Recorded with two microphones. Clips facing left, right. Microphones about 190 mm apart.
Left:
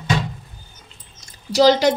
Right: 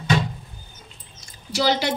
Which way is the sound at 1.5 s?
40° left (ahead or behind).